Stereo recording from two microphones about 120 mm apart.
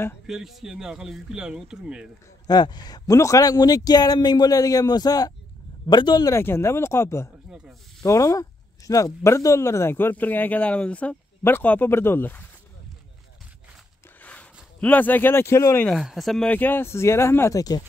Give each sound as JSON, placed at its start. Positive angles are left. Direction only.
{"t": 0.3, "sound": "speech", "side_deg": -5}
{"t": 2.4, "sound": "a man's voice", "side_deg": 35}
{"t": 6.3, "sound": "speech", "side_deg": 20}
{"t": 14.2, "sound": "speech", "side_deg": 10}
{"t": 16.0, "sound": "speech", "side_deg": 0}
{"t": 16.4, "sound": "speech", "side_deg": 15}